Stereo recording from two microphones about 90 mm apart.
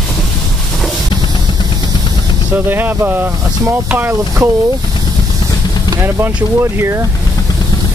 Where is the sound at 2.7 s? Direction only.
25° right (ahead or behind).